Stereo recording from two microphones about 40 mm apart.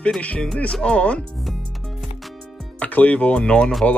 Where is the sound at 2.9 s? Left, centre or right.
Left.